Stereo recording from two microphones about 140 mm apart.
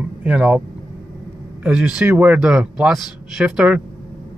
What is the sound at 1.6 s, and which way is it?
A man's voice, 10° right (ahead or behind).